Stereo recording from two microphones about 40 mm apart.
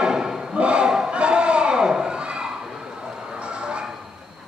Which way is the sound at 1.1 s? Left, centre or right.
Right.